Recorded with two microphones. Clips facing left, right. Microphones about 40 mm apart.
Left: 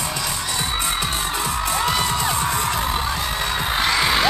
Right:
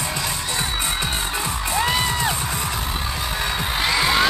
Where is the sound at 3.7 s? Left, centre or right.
Centre.